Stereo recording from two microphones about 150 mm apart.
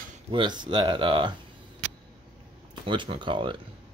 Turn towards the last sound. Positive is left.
turn(degrees=-35)  # may be behind; listen again after turning